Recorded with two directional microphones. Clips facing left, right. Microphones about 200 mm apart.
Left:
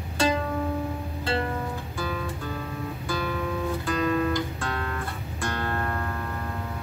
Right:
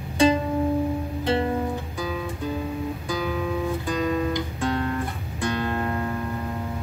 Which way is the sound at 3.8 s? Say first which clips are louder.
Left 2 dB; 15° right (ahead or behind).